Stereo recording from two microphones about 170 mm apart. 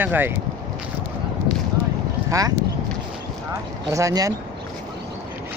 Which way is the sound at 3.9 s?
20° right (ahead or behind).